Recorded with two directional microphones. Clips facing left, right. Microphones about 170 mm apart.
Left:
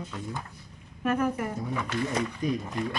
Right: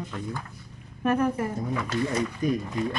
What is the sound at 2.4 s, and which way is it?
Speech, 50° right (ahead or behind).